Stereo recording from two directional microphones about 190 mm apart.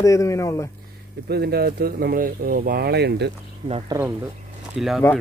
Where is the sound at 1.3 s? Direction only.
55° right (ahead or behind).